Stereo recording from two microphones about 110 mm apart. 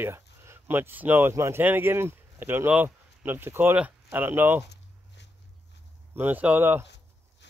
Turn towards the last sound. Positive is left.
turn(degrees=-20)  # may be behind; listen again after turning